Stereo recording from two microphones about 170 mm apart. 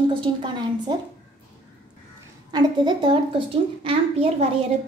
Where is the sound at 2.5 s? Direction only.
25° right (ahead or behind).